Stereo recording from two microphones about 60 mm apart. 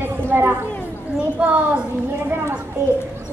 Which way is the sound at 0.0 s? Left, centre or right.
Right.